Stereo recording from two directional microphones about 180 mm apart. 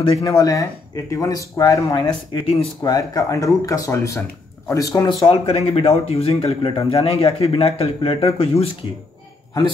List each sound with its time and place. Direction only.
0.0 s speech: 20° left (ahead or behind)
7.1 s speech: 35° left (ahead or behind)